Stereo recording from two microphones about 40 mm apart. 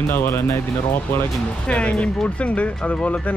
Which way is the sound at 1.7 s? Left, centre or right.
Left.